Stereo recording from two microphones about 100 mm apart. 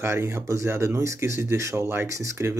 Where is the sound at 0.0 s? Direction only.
25° right (ahead or behind).